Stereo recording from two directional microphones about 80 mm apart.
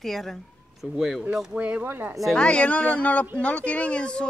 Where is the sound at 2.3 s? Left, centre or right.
Centre.